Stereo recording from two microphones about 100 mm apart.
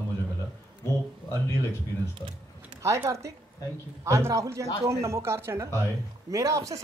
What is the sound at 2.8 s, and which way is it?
Speech, 30° right (ahead or behind).